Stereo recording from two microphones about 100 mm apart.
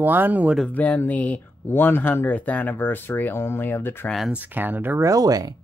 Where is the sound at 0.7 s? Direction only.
15° left (ahead or behind).